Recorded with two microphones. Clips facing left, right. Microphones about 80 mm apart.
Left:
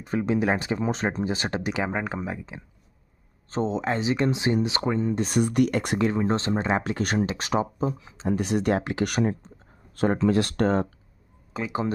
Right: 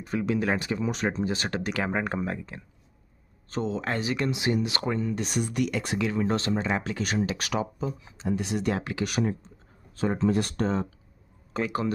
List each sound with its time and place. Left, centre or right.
0.1 s speech: left
1.9 s speech: centre
2.5 s speech: centre
3.4 s speech: left
5.3 s speech: left
6.8 s speech: left
7.3 s speech: left
8.3 s speech: left
9.9 s speech: left
10.3 s speech: left
11.6 s speech: centre